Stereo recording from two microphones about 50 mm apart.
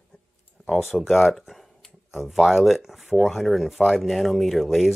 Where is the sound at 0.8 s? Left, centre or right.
Centre.